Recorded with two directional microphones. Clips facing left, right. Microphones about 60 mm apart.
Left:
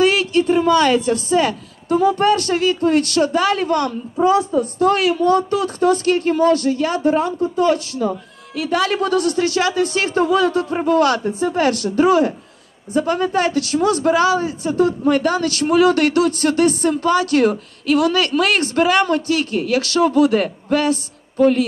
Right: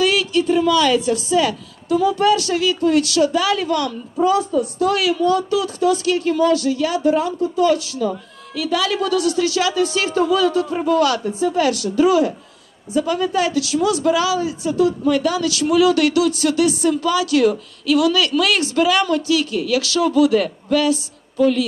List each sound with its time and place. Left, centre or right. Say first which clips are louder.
0.0 s a woman's voice: left 2 dB; left
4.3 s a woman's voice: left 3 dB; left
4.6 s speech: left 2 dB; left